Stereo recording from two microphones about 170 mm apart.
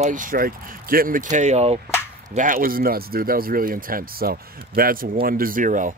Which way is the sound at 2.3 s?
50° right (ahead or behind).